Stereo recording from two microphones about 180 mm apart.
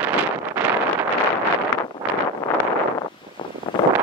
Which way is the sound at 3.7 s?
25° left (ahead or behind).